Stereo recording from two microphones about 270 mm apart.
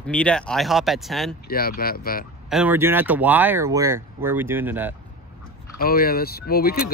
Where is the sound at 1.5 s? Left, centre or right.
Left.